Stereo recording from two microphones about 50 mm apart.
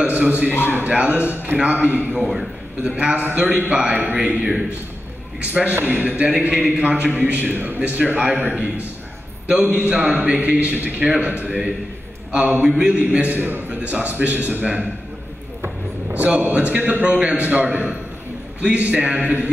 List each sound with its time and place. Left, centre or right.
0.0 s a man's voice: right
0.5 s a man's voice: left
0.7 s a man's voice: right
7.5 s a man's voice: right
8.4 s a man's voice: right
10.0 s a man's voice: right
12.6 s speech: centre
12.9 s a man's voice: right
13.7 s a man's voice: right
16.1 s a man's voice: right